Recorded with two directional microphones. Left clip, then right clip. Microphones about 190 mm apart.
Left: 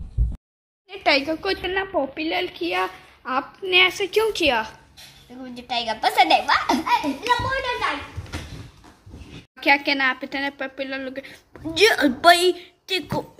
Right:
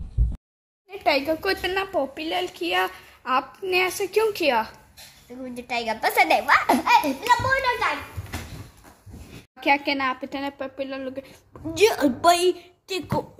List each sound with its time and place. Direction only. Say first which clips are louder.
0.2 s a sound: even; centre (ahead or behind)
0.8 s a woman's voice: left 2 dB; 5° right (ahead or behind)
2.1 s a woman's voice: left 2 dB; 10° left (ahead or behind)
5.4 s a woman's voice: left 1 dB; 15° right (ahead or behind)
6.7 s a child's voice: right 2 dB; 25° right (ahead or behind)
9.6 s a woman's voice: left 3 dB; 10° right (ahead or behind)